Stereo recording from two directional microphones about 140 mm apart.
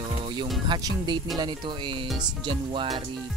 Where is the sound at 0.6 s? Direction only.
30° right (ahead or behind).